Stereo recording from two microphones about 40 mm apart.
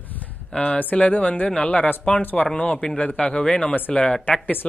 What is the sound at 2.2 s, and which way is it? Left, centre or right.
Speech, left.